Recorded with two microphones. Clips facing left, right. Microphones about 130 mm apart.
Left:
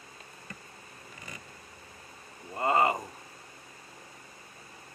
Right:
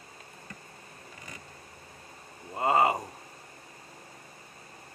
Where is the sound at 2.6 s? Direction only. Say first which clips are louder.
Right 1 dB; 25° right (ahead or behind).